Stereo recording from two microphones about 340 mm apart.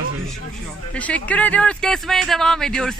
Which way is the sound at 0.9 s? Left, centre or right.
Centre.